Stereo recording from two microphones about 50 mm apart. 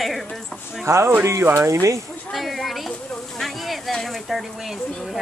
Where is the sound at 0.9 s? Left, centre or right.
Right.